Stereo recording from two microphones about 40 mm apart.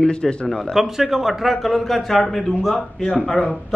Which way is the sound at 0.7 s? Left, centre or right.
Centre.